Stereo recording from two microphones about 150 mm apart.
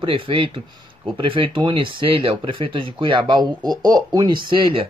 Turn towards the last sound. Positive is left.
turn(degrees=-35)  # may be behind; listen again after turning